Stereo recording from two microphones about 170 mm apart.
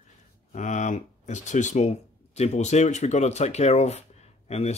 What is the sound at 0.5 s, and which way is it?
Speech, 45° left (ahead or behind).